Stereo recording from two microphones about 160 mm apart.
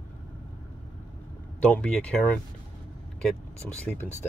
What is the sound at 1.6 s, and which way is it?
Speech, 5° left (ahead or behind).